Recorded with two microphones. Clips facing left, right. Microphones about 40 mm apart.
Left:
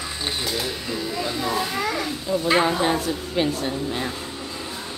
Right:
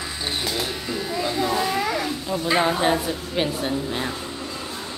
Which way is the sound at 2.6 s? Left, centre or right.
Centre.